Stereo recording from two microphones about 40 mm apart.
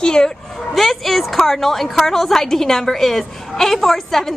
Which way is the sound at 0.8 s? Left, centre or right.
Centre.